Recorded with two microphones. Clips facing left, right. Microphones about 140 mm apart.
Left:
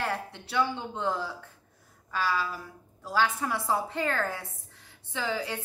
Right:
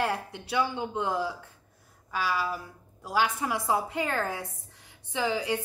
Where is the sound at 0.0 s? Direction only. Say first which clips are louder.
Right 3 dB; 15° right (ahead or behind).